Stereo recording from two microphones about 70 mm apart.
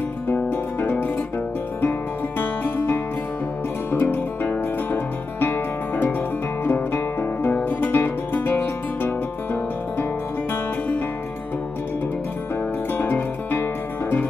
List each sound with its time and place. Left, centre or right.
0.3 s music: left
12.9 s music: left